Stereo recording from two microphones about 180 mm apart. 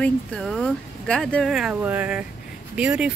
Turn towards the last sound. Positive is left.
turn(degrees=-5)  # may be behind; listen again after turning